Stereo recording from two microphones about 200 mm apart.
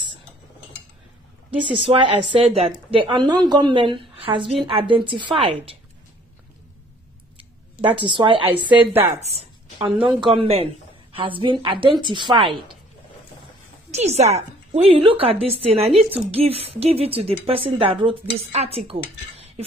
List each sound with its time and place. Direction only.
1.8 s a woman's voice: 25° right (ahead or behind)
7.8 s a woman's voice: 25° right (ahead or behind)
8.7 s a woman's voice: 10° right (ahead or behind)
9.2 s a sound: 30° right (ahead or behind)
10.0 s a woman's voice: 25° right (ahead or behind)
13.8 s a woman's voice: 35° right (ahead or behind)